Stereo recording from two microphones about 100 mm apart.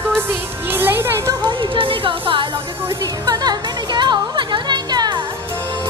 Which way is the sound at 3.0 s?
40° right (ahead or behind).